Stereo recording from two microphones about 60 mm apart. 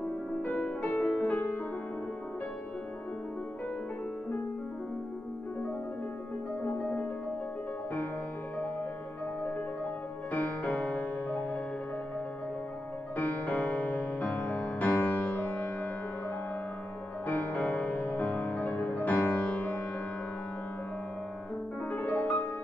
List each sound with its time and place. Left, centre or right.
0.4 s music: left
6.6 s music: left
10.3 s music: left
13.1 s music: left
17.3 s music: left
21.9 s music: left